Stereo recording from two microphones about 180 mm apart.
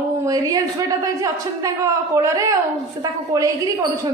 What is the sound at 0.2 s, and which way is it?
A woman's voice, 20° right (ahead or behind).